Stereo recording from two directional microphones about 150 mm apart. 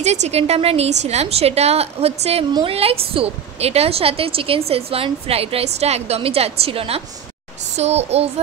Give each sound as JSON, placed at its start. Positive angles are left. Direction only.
{"t": 0.0, "sound": "a woman's voice", "side_deg": -50}